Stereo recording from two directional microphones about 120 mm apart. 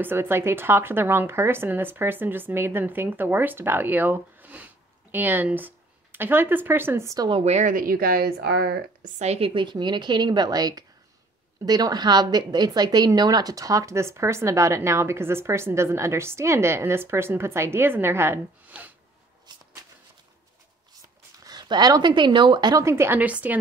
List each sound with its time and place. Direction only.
0.0 s a woman's voice: 20° right (ahead or behind)
7.4 s speech: 70° right (ahead or behind)
9.0 s a woman's voice: 65° right (ahead or behind)
9.5 s a woman's voice: 40° right (ahead or behind); by 18.9 s 15° right (ahead or behind)
21.5 s a woman's voice: 35° right (ahead or behind)
22.8 s a woman's voice: 20° right (ahead or behind)